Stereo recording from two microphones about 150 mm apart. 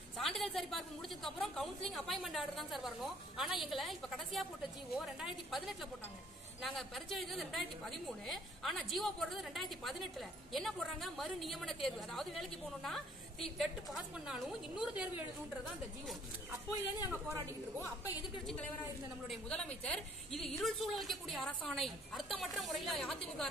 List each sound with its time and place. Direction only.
0.2 s a woman's voice: centre (ahead or behind)
17.1 s speech: 15° right (ahead or behind)
19.2 s a woman's voice: 5° left (ahead or behind)